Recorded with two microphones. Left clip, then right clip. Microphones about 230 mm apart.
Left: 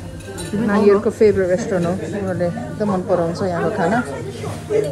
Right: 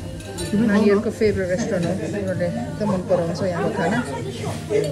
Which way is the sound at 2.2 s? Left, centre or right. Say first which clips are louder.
Left 5 dB; left.